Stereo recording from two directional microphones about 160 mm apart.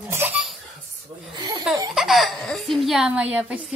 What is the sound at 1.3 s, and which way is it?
Laughter, 25° right (ahead or behind).